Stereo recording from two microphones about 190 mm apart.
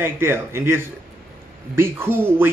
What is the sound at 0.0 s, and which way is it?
Speech, 10° right (ahead or behind).